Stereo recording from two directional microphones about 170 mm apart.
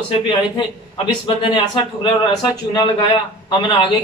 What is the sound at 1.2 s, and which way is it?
Speech, 30° left (ahead or behind).